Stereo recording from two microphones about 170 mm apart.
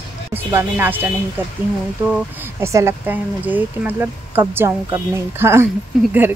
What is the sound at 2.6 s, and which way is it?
Speech, 15° right (ahead or behind).